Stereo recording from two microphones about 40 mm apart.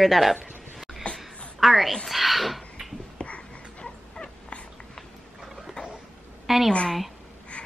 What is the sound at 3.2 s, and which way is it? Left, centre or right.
Dog, left.